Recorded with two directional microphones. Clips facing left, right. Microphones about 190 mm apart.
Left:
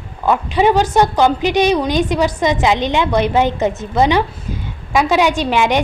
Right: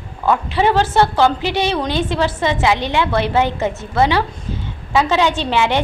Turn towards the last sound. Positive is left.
turn(degrees=15)  # may be behind; listen again after turning